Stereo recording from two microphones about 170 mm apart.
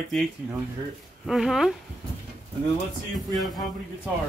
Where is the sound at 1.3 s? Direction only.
Centre (ahead or behind).